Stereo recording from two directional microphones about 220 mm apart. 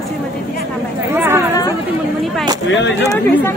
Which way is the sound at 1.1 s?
10° right (ahead or behind).